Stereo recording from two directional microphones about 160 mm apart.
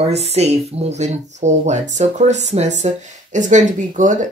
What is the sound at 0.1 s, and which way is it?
Speech, 40° right (ahead or behind).